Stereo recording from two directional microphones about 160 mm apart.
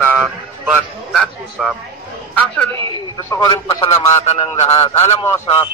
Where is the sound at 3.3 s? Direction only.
25° left (ahead or behind).